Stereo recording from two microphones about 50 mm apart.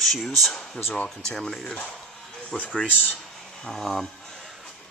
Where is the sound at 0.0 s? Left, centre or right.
Centre.